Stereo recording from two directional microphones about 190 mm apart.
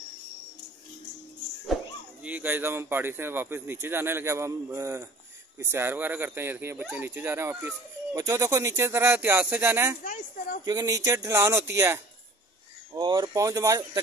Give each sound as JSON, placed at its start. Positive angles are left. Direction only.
{"t": 2.2, "sound": "speech", "side_deg": -10}